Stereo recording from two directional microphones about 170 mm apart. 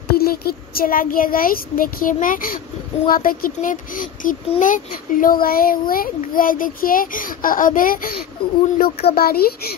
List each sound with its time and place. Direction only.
0.1 s a child's voice: 65° left (ahead or behind)